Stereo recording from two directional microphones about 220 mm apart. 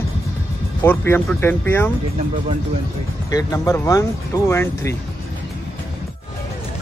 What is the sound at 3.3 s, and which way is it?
Speech, 15° left (ahead or behind).